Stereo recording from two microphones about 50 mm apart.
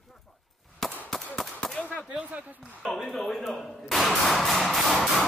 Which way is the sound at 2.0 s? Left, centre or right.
Right.